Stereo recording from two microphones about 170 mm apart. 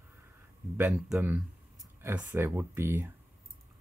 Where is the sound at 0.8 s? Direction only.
5° right (ahead or behind).